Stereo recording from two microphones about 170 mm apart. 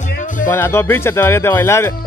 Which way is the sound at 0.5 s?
15° left (ahead or behind).